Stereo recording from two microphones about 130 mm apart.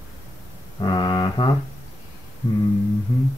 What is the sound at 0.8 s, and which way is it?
Music, 35° left (ahead or behind).